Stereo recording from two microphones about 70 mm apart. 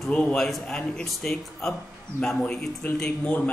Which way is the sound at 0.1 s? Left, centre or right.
Centre.